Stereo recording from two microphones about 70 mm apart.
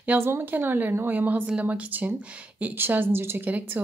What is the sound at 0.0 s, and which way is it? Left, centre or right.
A woman's voice, right.